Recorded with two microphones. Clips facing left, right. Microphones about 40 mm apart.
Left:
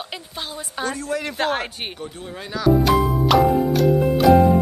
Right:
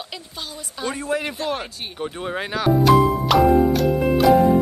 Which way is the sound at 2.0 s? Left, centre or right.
Right.